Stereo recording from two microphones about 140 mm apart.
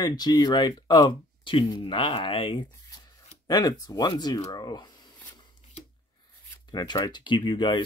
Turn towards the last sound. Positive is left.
turn(degrees=35)  # may be behind; listen again after turning